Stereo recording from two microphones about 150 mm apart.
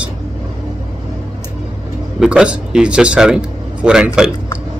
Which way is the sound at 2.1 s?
5° right (ahead or behind).